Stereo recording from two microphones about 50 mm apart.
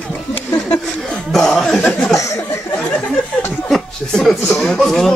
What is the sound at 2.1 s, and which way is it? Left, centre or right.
Speech, left.